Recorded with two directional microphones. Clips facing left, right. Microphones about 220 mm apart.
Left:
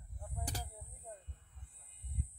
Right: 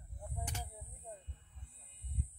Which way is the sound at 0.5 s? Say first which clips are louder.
Left 1 dB; 35° left (ahead or behind).